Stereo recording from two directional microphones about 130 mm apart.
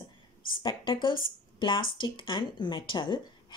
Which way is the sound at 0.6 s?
40° left (ahead or behind).